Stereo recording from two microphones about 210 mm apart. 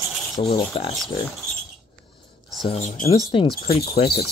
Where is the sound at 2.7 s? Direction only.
35° left (ahead or behind).